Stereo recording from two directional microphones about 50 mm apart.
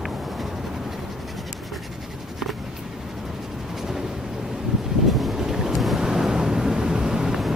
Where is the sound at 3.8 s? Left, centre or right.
Centre.